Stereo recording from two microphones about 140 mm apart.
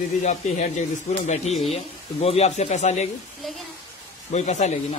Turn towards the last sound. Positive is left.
turn(degrees=55)  # may be behind; listen again after turning